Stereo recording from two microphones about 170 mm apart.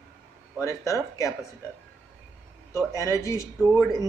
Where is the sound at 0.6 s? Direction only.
20° left (ahead or behind).